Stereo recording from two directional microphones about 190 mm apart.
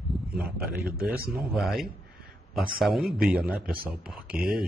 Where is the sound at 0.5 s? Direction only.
5° right (ahead or behind).